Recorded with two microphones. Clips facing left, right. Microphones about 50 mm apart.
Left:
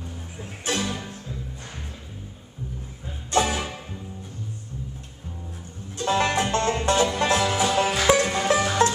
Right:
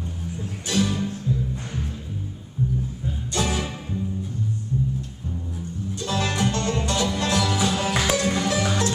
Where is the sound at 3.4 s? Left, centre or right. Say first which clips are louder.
Even; centre.